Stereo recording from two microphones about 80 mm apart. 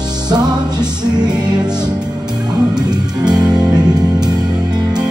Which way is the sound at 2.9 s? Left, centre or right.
Right.